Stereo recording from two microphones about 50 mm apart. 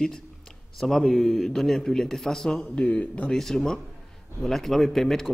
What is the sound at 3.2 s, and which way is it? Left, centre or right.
A man's voice, centre.